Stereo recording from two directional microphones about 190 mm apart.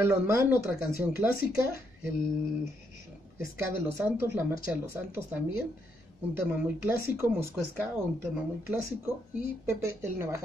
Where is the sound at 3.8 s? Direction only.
15° right (ahead or behind).